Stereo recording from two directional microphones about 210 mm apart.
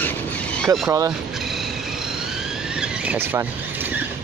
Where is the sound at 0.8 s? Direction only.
15° right (ahead or behind).